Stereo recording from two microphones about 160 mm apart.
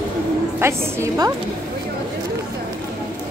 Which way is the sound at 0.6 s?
15° right (ahead or behind).